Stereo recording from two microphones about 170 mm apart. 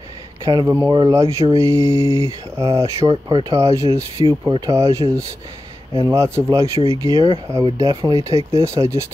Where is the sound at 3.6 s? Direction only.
20° right (ahead or behind).